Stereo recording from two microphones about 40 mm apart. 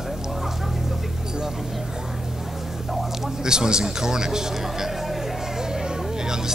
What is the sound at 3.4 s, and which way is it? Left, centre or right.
Speech, centre.